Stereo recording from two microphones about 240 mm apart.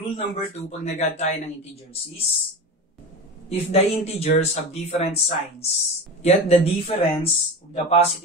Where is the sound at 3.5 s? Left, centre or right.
Left.